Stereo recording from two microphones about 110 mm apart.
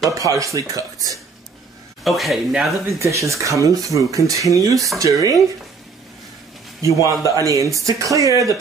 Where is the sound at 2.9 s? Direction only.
25° right (ahead or behind).